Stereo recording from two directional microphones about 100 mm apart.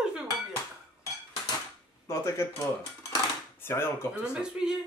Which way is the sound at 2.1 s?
30° left (ahead or behind).